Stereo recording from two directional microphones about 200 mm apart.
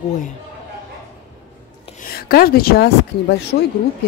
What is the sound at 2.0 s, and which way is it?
A woman's voice, 50° left (ahead or behind).